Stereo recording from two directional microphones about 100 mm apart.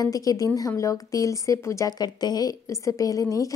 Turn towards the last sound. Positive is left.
turn(degrees=35)  # may be behind; listen again after turning